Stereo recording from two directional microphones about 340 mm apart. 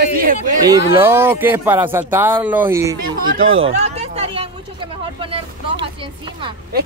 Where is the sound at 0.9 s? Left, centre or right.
Centre.